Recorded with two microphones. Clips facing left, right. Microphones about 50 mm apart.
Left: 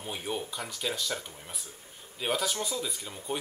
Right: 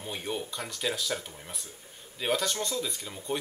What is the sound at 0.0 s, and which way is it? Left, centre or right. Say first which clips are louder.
Speech: even; centre.